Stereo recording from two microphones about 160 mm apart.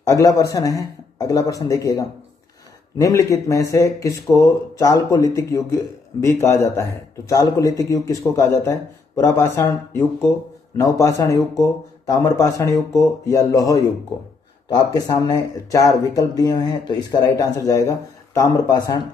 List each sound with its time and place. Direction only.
0.0 s speech: 20° left (ahead or behind)